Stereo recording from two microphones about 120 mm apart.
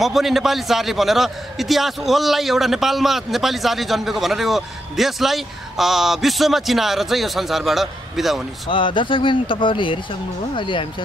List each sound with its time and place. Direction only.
0.0 s a man's voice: centre (ahead or behind)
8.6 s speech: 45° left (ahead or behind)